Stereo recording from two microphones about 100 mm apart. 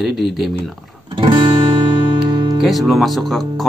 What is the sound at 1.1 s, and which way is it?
Music, 55° right (ahead or behind).